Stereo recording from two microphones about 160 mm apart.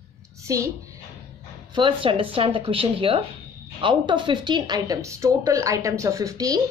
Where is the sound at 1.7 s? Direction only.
30° right (ahead or behind).